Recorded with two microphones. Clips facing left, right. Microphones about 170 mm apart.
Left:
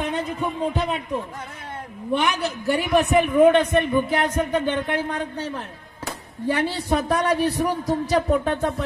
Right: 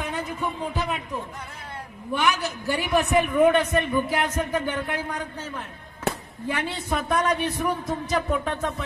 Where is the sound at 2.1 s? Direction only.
25° left (ahead or behind).